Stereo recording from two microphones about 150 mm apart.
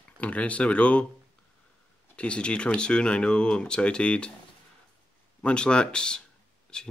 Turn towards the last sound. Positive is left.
turn(degrees=5)  # may be behind; listen again after turning